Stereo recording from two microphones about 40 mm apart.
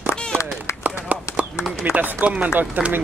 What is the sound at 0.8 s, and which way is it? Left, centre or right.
Clip-clop, right.